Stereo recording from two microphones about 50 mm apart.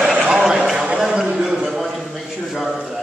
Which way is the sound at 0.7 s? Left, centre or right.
Centre.